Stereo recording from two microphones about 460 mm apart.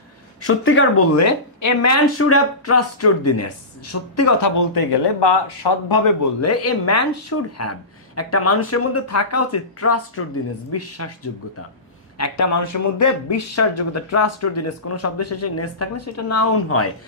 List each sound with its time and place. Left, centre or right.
0.4 s speech: left
4.7 s speech: left
6.4 s speech: left
12.2 s speech: left